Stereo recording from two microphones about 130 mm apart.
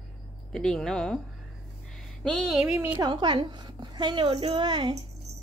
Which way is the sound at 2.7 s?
15° right (ahead or behind).